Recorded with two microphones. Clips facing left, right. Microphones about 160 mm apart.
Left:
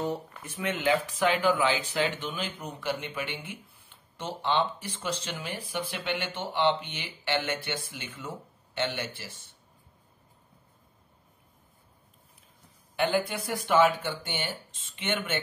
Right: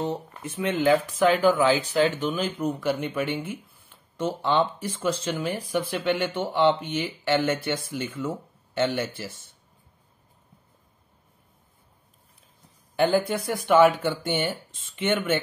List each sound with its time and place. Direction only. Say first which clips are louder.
0.0 s speech: right 3 dB; 25° right (ahead or behind); by 9.1 s 45° right (ahead or behind)
12.9 s speech: right 5 dB; 40° right (ahead or behind)